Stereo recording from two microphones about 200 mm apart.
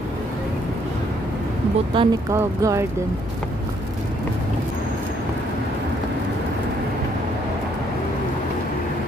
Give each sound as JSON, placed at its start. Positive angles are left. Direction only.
{"t": 1.9, "sound": "speech", "side_deg": -25}
{"t": 2.3, "sound": "speech", "side_deg": -15}